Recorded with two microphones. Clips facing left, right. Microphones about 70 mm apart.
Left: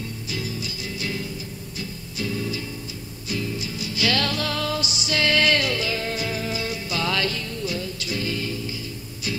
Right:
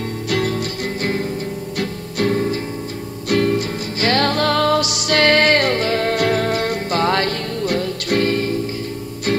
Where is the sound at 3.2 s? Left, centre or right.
Right.